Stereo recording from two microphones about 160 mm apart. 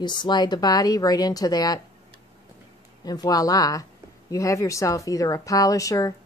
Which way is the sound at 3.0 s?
25° left (ahead or behind).